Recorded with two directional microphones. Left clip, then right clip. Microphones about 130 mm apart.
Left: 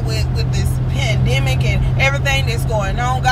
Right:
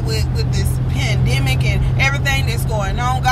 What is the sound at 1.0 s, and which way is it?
Vehicle, 10° right (ahead or behind).